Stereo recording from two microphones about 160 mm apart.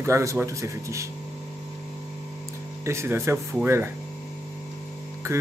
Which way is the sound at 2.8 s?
15° right (ahead or behind).